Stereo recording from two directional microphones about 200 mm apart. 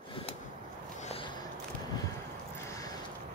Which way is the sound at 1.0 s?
30° left (ahead or behind).